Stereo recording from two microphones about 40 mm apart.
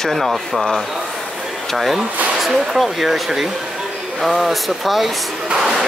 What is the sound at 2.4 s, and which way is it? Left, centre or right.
Speech, centre.